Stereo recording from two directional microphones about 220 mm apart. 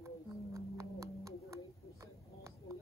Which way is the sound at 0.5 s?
15° right (ahead or behind).